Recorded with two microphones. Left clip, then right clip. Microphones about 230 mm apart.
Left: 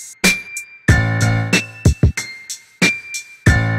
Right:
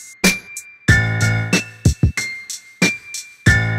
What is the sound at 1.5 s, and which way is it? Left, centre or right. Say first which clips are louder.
Music: left 3 dB; centre.